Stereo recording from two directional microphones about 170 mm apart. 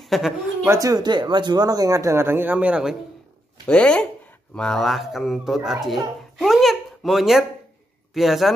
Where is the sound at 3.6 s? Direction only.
5° left (ahead or behind).